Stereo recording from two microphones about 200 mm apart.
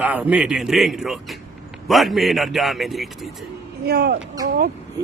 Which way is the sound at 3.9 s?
50° right (ahead or behind).